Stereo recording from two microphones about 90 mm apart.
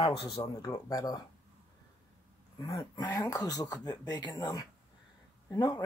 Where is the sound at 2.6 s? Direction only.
45° left (ahead or behind).